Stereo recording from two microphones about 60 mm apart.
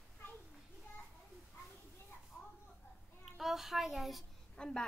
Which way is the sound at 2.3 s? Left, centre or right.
Left.